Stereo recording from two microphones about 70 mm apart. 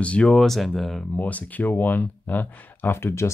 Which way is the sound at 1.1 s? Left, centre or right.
Left.